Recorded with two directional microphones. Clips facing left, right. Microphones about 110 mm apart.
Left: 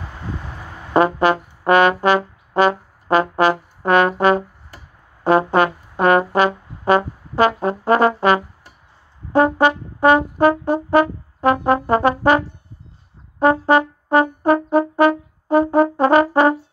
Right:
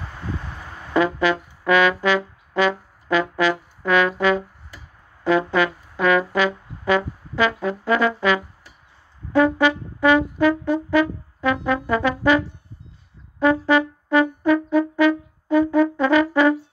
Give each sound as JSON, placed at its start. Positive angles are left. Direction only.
{"t": 0.9, "sound": "trombone", "side_deg": 45}
{"t": 3.8, "sound": "brass instrument", "side_deg": 45}